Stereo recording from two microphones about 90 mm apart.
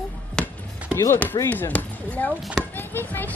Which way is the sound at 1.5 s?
20° left (ahead or behind).